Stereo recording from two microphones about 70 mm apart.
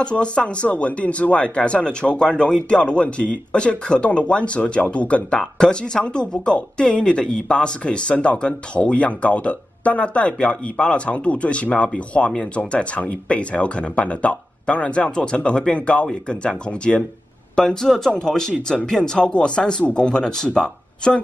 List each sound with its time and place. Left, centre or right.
0.0 s speech: centre